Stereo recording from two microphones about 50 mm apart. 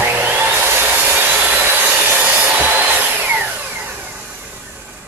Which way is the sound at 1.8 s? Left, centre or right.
Right.